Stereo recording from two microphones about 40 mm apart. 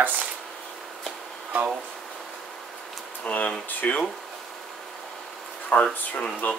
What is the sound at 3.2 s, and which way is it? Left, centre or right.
Speech, left.